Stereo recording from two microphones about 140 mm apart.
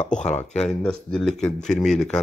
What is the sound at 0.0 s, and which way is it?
Speech, 55° left (ahead or behind).